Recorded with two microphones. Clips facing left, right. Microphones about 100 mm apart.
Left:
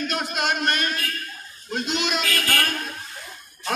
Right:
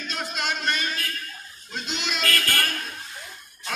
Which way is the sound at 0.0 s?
55° left (ahead or behind).